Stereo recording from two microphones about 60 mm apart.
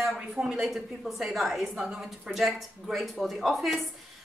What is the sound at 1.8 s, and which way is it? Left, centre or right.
Speech, centre.